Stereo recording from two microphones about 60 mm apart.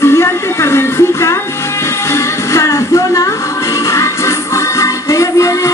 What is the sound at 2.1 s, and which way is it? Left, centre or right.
Music, left.